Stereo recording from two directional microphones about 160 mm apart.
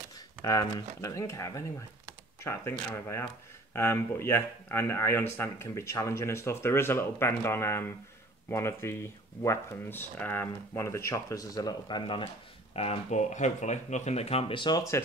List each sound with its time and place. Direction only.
0.4 s speech: 20° left (ahead or behind)